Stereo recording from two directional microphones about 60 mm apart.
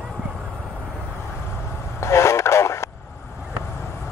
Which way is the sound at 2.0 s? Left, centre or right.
Left.